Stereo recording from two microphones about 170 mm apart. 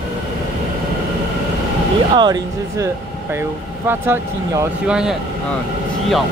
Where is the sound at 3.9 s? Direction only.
15° right (ahead or behind).